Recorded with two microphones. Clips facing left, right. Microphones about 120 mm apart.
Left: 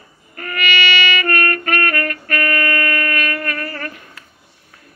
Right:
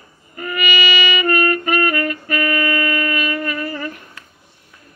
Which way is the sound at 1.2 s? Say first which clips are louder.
Right 2 dB; 15° right (ahead or behind).